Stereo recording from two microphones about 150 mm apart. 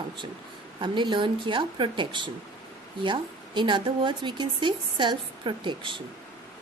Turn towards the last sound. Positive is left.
turn(degrees=-35)  # may be behind; listen again after turning